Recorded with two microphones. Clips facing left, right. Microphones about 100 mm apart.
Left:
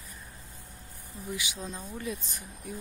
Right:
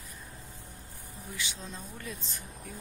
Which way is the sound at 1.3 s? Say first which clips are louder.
Left 4 dB; 10° left (ahead or behind).